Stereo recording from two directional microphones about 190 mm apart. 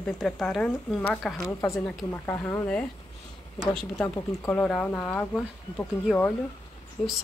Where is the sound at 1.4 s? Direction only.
15° left (ahead or behind).